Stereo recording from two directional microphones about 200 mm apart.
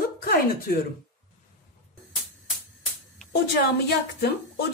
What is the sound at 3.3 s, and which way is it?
A woman's voice, 55° left (ahead or behind).